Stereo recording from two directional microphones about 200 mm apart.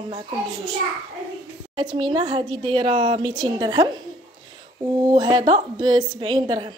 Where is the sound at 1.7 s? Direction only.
20° right (ahead or behind).